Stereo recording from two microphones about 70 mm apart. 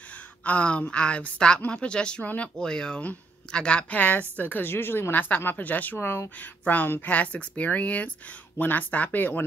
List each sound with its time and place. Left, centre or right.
0.4 s a woman's voice: centre